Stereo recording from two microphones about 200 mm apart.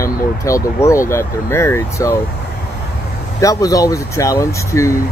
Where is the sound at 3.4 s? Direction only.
15° left (ahead or behind).